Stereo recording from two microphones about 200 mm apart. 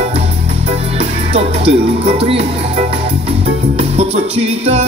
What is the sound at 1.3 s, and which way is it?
Speech, 30° right (ahead or behind).